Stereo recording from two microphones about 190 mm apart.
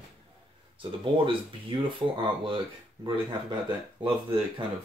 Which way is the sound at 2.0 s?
25° right (ahead or behind).